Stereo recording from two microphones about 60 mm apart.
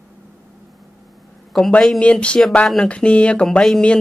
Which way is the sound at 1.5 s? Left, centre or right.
Centre.